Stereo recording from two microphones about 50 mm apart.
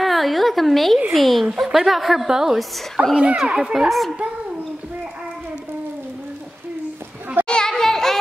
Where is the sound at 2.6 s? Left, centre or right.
Centre.